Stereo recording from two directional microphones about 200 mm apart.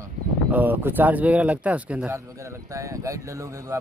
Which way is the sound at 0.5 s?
10° right (ahead or behind).